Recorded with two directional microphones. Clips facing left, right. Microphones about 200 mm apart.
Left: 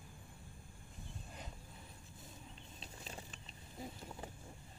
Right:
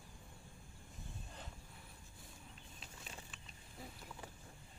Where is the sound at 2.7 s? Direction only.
30° left (ahead or behind).